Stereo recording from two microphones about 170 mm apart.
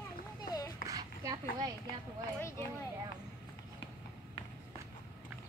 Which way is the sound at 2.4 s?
15° left (ahead or behind).